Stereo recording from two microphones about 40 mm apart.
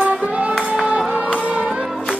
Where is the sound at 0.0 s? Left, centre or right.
Right.